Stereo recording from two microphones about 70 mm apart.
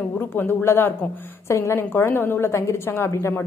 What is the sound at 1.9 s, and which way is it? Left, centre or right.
A woman's voice, left.